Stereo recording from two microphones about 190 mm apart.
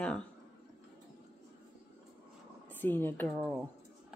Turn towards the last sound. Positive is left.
turn(degrees=10)  # may be behind; listen again after turning